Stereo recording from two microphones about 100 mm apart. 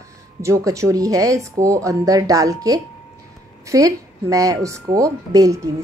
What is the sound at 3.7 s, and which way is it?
Speech, 35° right (ahead or behind).